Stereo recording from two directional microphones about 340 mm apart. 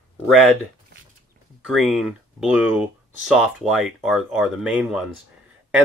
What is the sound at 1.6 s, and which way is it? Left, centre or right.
Speech, centre.